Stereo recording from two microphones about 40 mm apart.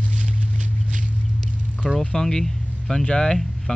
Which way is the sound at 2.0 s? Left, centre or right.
Centre.